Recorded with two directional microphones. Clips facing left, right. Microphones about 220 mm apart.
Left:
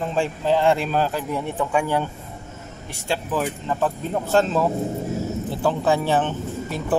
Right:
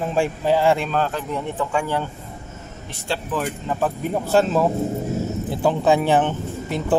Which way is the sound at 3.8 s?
10° right (ahead or behind).